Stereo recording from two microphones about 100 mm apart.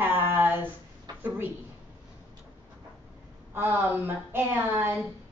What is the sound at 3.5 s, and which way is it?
Speech, 20° right (ahead or behind).